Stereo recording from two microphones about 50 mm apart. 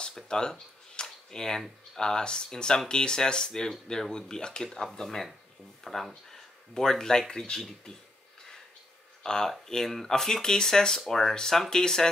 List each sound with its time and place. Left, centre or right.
0.0 s a sound: centre
2.0 s speech: centre
4.6 s speech: centre
9.2 s speech: centre